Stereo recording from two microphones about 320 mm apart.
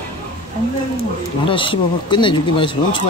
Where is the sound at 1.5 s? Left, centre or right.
Centre.